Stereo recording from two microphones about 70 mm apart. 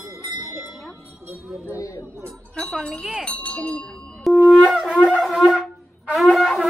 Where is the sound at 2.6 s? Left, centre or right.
Centre.